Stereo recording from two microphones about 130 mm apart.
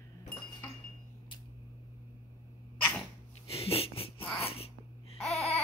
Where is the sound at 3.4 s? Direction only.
50° left (ahead or behind).